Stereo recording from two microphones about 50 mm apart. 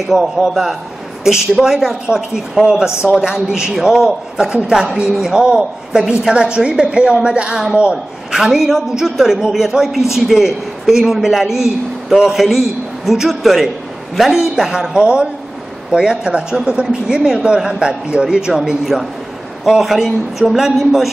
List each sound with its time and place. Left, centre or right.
0.1 s a man's voice: centre
8.4 s a woman's voice: centre
15.0 s a woman's voice: centre
19.7 s a man's voice: centre